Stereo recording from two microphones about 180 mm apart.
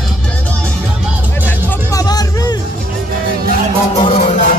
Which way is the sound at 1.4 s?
20° left (ahead or behind).